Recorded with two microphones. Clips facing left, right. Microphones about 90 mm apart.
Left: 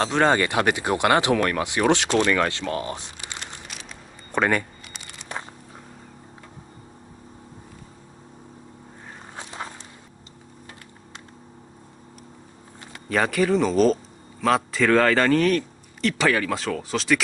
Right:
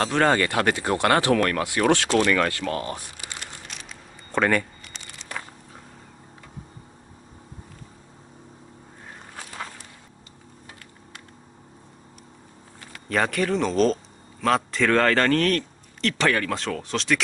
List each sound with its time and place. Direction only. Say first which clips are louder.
0.0 s speech: left 1 dB; 20° left (ahead or behind)
9.4 s a sound: left 1 dB; 25° left (ahead or behind)
13.1 s a man's voice: left 2 dB; centre (ahead or behind)